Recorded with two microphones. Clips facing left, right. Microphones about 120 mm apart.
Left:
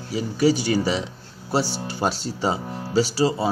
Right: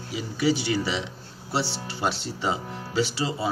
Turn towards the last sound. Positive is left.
turn(degrees=40)  # may be behind; listen again after turning